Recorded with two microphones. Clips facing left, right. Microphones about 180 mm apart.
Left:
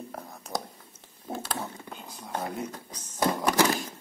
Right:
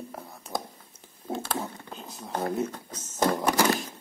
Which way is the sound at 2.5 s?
25° right (ahead or behind).